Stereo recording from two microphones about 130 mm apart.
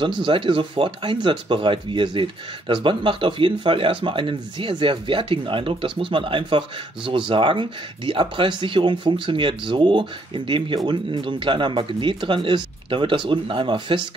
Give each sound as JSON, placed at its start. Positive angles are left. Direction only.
{"t": 0.0, "sound": "speech", "side_deg": -40}